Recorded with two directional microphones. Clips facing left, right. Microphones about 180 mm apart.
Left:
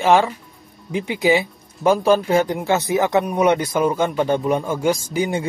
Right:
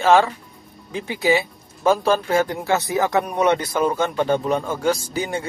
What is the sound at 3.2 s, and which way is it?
A man's voice, 5° left (ahead or behind).